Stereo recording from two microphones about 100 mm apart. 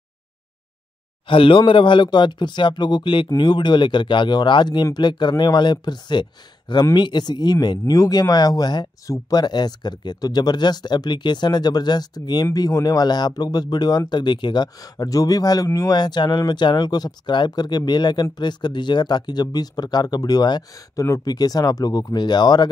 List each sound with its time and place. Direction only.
1.2 s speech: 60° left (ahead or behind)